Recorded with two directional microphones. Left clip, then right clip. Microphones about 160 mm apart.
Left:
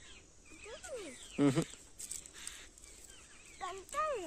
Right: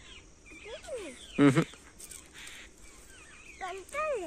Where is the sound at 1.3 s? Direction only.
5° left (ahead or behind).